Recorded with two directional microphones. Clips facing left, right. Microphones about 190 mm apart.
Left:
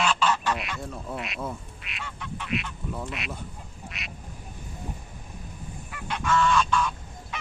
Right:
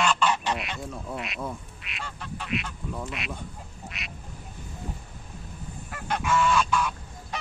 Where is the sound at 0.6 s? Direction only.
Centre (ahead or behind).